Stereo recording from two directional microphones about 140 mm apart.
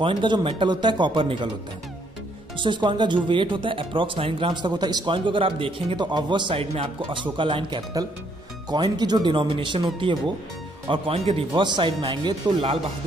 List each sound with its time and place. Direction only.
0.0 s speech: 35° right (ahead or behind)
2.5 s speech: 35° right (ahead or behind)
10.9 s speech: 40° right (ahead or behind)